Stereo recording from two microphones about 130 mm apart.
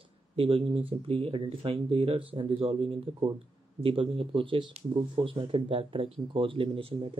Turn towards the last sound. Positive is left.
turn(degrees=-45)  # may be behind; listen again after turning